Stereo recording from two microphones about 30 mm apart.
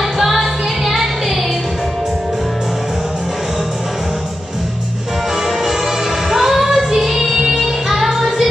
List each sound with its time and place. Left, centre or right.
0.2 s music: centre
6.3 s music: centre
8.1 s child singing: centre